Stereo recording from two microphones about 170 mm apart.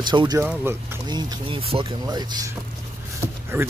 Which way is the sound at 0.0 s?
25° right (ahead or behind).